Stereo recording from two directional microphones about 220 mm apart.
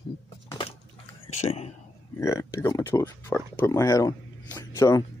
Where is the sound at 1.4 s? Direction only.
30° left (ahead or behind).